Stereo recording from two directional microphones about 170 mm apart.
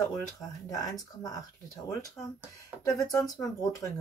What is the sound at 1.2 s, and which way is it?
Speech, 20° left (ahead or behind).